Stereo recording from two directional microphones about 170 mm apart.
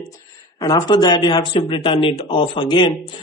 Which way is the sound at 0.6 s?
25° left (ahead or behind).